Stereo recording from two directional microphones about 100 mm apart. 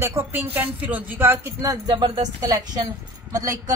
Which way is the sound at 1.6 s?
40° right (ahead or behind).